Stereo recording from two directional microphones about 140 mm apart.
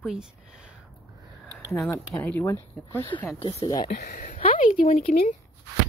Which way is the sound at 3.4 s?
30° left (ahead or behind).